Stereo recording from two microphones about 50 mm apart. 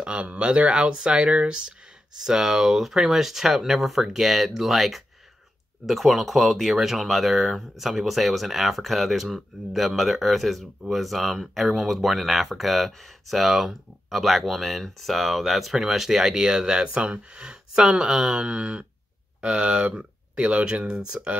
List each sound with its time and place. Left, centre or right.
0.0 s speech: right